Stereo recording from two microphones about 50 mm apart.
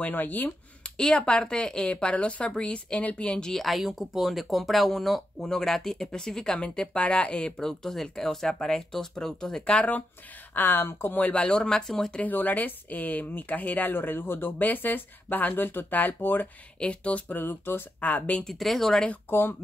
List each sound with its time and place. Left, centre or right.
0.0 s speech: left
0.8 s speech: centre
3.4 s speech: centre
10.5 s speech: left
11.3 s speech: centre
12.3 s speech: left
15.9 s speech: left
16.8 s speech: left
17.3 s speech: left
18.4 s speech: centre